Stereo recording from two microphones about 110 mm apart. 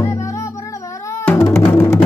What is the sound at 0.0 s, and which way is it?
Music, 30° left (ahead or behind).